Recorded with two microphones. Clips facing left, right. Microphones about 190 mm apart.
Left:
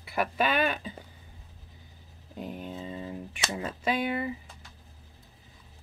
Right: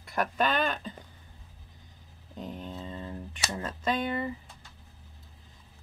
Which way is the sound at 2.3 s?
10° left (ahead or behind).